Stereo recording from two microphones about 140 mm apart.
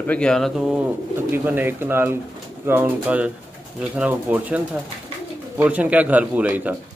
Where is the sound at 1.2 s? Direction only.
15° right (ahead or behind).